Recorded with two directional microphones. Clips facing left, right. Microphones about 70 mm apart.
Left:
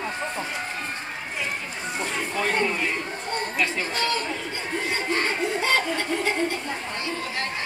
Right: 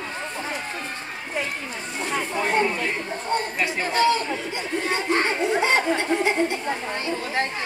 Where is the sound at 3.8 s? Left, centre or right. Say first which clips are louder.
Right 6 dB; right.